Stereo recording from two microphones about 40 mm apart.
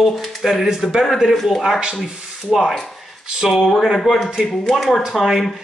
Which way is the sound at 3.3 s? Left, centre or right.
Centre.